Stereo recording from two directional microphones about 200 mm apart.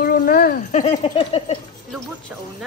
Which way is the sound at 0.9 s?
25° left (ahead or behind).